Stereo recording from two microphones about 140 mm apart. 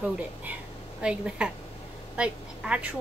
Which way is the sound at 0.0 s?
10° right (ahead or behind).